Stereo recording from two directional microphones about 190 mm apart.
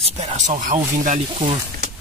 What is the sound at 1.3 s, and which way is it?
Speech, 30° right (ahead or behind).